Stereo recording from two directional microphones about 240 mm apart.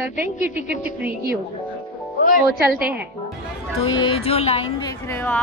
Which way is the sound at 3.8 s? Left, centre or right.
Centre.